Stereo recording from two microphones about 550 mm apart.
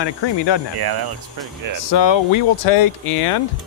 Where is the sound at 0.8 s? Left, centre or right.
Right.